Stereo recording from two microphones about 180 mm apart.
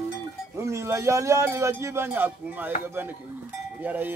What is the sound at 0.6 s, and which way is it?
Speech, 15° right (ahead or behind).